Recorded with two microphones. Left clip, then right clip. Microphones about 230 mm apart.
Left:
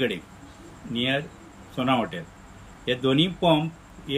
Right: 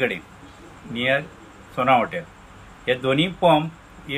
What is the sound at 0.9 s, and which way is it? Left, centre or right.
Speech, centre.